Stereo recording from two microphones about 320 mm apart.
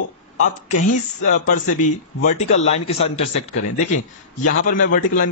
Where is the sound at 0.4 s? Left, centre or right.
Left.